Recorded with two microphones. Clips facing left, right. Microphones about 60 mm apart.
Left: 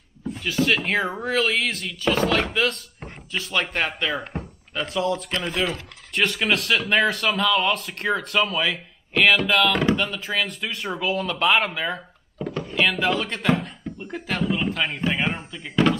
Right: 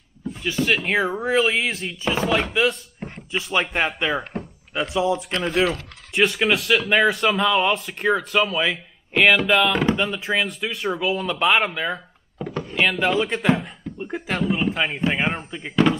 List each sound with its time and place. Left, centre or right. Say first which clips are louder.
0.4 s speech: even; centre
7.6 s speech: right 3 dB; centre
12.6 s a sound: right 1 dB; centre
13.0 s speech: right 3 dB; centre